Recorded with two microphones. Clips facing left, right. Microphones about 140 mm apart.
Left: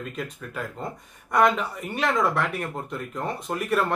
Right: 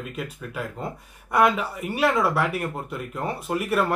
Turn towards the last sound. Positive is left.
turn(degrees=-5)  # may be behind; listen again after turning